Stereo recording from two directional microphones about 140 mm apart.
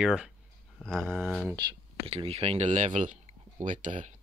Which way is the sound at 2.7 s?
60° right (ahead or behind).